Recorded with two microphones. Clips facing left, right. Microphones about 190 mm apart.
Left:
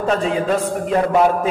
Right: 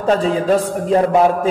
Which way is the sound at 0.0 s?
35° right (ahead or behind).